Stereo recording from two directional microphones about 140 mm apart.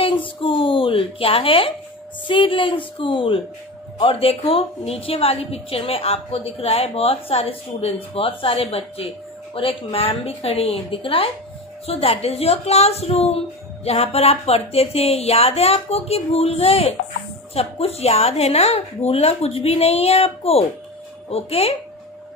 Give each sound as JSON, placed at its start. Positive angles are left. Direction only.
{"t": 0.0, "sound": "a woman's voice", "side_deg": 40}